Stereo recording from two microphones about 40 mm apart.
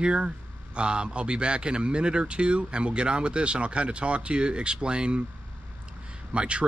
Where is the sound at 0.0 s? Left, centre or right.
Right.